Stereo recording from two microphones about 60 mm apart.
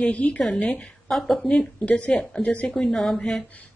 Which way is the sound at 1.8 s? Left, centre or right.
Left.